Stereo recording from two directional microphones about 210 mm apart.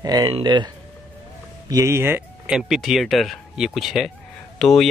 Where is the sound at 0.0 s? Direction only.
20° right (ahead or behind).